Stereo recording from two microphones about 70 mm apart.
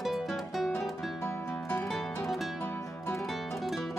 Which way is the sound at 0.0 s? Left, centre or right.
Centre.